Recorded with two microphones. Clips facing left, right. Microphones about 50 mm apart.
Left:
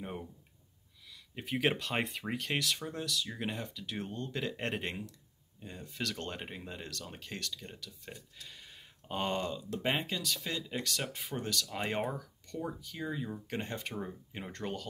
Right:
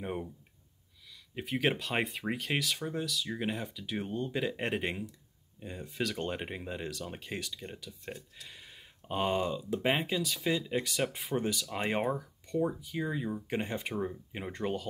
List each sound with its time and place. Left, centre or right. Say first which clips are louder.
0.0 s speech: right 5 dB; centre
1.3 s speech: right 1 dB; centre